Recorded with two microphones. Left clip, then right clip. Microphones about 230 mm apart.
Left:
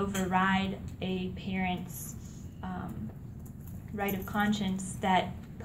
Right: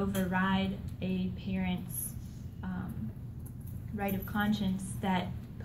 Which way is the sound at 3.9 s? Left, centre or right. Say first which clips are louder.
Left 3 dB; left.